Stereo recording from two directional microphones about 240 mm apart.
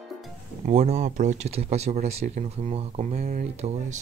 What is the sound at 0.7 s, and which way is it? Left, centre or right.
Speech, right.